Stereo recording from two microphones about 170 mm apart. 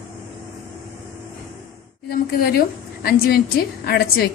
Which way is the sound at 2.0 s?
65° left (ahead or behind).